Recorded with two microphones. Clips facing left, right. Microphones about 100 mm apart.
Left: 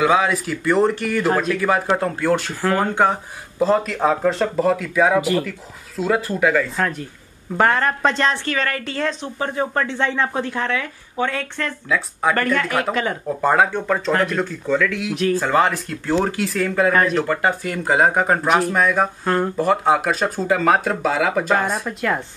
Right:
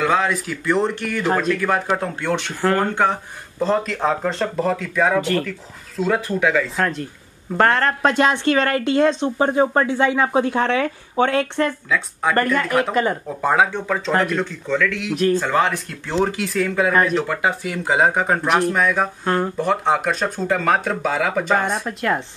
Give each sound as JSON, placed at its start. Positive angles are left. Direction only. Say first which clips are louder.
{"t": 0.0, "sound": "speech", "louder": "left 2 dB", "side_deg": 5}
{"t": 8.0, "sound": "a woman's voice", "louder": "right 2 dB", "side_deg": -15}
{"t": 9.8, "sound": "a woman's voice", "louder": "right 3 dB", "side_deg": -10}
{"t": 11.9, "sound": "speech", "louder": "even", "side_deg": 0}